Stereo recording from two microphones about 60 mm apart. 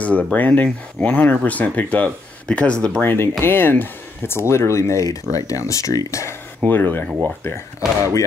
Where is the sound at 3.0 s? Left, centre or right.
Left.